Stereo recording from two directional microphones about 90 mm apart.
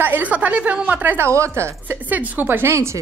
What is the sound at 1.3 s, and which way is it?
Speech, 30° right (ahead or behind).